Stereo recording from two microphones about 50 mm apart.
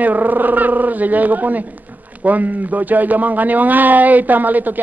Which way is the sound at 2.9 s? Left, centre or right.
Right.